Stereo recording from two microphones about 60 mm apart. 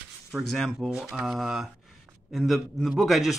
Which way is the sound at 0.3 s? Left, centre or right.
Centre.